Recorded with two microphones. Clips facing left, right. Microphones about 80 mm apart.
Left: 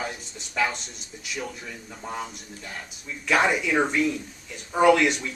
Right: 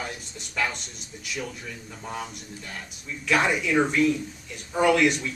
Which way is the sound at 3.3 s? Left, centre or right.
Centre.